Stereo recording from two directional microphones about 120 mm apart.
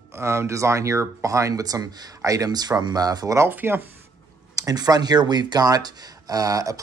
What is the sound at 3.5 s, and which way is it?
Speech, 15° right (ahead or behind).